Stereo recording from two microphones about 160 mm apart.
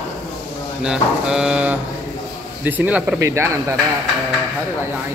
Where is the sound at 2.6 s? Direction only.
10° right (ahead or behind).